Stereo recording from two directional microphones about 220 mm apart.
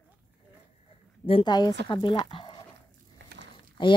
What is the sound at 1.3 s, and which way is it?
Speech, 20° left (ahead or behind).